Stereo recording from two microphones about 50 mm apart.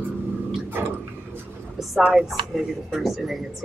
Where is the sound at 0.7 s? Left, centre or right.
Right.